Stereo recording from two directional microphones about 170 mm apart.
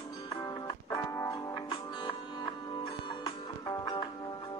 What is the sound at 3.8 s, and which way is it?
Music, 25° left (ahead or behind).